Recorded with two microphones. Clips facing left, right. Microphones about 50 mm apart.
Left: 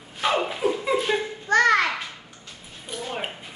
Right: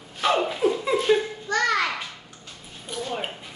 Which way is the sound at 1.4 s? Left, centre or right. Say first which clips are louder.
Left 5 dB; left.